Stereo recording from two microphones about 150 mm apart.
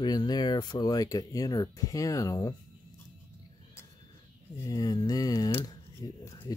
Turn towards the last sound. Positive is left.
turn(degrees=20)  # may be behind; listen again after turning